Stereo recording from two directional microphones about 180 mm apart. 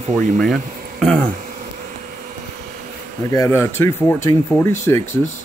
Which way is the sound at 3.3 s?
15° left (ahead or behind).